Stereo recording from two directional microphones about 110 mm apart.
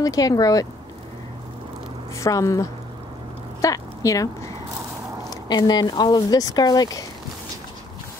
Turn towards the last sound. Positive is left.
turn(degrees=35)  # may be behind; listen again after turning